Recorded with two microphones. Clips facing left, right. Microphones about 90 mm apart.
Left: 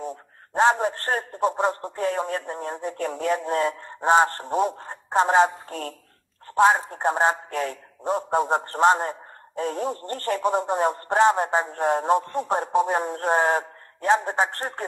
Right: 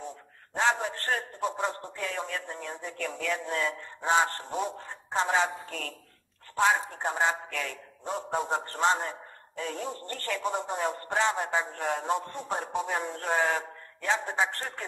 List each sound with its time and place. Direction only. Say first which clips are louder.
0.6 s a man's voice: left 7 dB; 45° left (ahead or behind)